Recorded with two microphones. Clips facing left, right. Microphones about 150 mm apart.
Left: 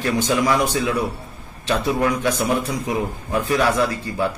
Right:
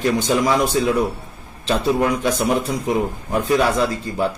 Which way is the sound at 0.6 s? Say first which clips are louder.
Right 3 dB; 30° right (ahead or behind).